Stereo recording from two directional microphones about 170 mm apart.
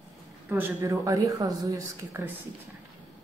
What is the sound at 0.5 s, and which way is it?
A woman's voice, 15° right (ahead or behind).